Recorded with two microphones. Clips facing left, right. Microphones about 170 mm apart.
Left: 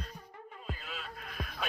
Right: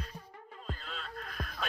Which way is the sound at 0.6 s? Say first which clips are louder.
Even; 10° left (ahead or behind).